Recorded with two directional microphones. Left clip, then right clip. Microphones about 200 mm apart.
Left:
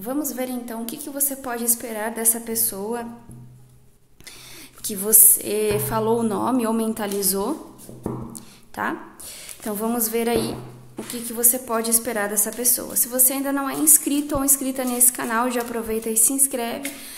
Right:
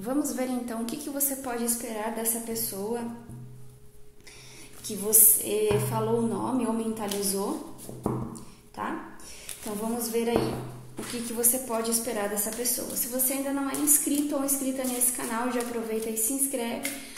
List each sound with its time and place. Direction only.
0.0 s a woman's voice: 15° left (ahead or behind)
1.3 s a woman's voice: 25° left (ahead or behind)
4.8 s a woman's voice: 40° left (ahead or behind)
8.8 s a woman's voice: 35° left (ahead or behind)
11.2 s a woman's voice: 20° left (ahead or behind)
11.7 s a woman's voice: 35° left (ahead or behind)